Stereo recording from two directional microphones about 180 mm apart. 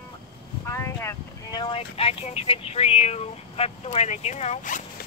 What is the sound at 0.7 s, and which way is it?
Speech, 15° left (ahead or behind).